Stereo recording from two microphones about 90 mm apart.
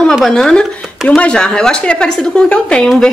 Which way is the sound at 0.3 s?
10° left (ahead or behind).